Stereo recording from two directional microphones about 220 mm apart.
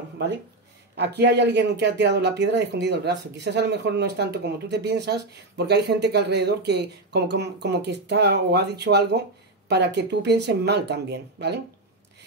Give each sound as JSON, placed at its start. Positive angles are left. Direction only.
{"t": 0.9, "sound": "speech", "side_deg": -50}